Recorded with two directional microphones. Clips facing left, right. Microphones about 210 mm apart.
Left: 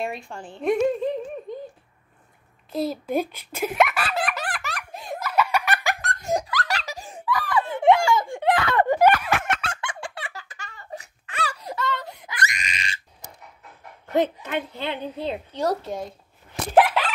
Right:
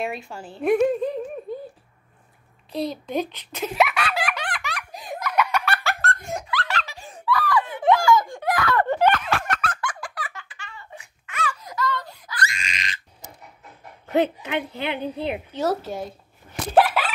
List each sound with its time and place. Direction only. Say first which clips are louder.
0.0 s a woman's voice: right 1 dB; centre (ahead or behind)
1.5 s a sound: right 2 dB; 5° right (ahead or behind)
2.7 s a child's voice: left 2 dB; 5° left (ahead or behind)
3.7 s laughter: even; centre (ahead or behind)
5.7 s giggle: even; 15° left (ahead or behind)
6.2 s giggle: left 4 dB; 40° left (ahead or behind)
7.2 s giggle: right 2 dB; 20° left (ahead or behind)
8.8 s a sound: left 2 dB; 10° left (ahead or behind)
9.4 s a sound: even; 25° left (ahead or behind)
10.5 s baby cry: left 4 dB; 40° left (ahead or behind); by 12.4 s 20° left (ahead or behind)
14.0 s a woman's voice: right 1 dB; 10° right (ahead or behind)
16.8 s a sound: even; 10° right (ahead or behind)